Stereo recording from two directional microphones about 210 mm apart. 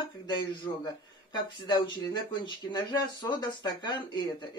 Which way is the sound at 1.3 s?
20° left (ahead or behind).